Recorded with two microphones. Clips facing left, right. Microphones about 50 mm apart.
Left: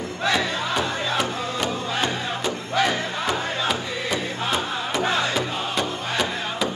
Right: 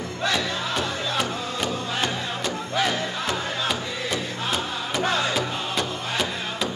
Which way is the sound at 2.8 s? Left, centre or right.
Centre.